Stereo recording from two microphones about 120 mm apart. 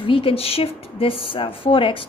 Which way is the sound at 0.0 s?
45° left (ahead or behind).